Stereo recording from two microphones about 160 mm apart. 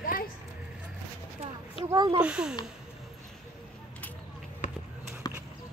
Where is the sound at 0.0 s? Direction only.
60° left (ahead or behind).